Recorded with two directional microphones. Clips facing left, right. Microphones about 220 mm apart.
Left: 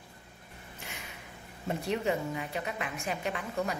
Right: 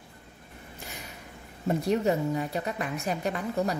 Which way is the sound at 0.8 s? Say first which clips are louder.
Right 2 dB; 40° right (ahead or behind).